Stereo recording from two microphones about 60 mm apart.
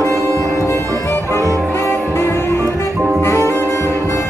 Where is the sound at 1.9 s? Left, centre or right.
Left.